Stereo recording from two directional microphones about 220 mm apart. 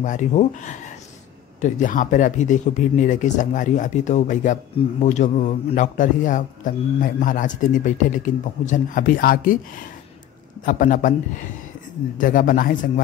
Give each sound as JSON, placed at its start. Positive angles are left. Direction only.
{"t": 0.0, "sound": "a man's voice", "side_deg": 35}
{"t": 10.6, "sound": "a man's voice", "side_deg": 35}
{"t": 12.2, "sound": "a man's voice", "side_deg": 40}